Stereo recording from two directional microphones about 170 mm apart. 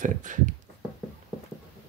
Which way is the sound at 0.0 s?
50° right (ahead or behind).